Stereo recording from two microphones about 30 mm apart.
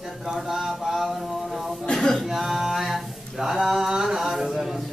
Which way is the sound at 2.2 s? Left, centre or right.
Centre.